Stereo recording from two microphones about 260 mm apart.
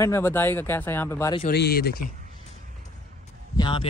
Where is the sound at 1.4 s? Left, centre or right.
Left.